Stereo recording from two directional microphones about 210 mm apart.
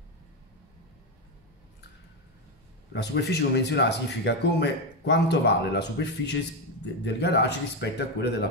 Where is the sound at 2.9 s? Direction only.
55° left (ahead or behind).